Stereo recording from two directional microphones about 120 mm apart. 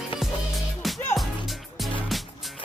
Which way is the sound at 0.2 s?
5° right (ahead or behind).